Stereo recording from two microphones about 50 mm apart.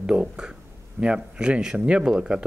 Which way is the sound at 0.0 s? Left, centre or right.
Centre.